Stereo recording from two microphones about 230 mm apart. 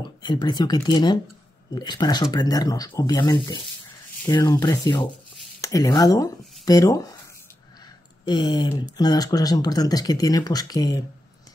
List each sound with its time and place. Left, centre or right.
0.0 s speech: centre
8.3 s speech: centre